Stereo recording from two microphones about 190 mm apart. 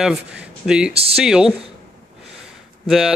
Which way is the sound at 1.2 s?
5° right (ahead or behind).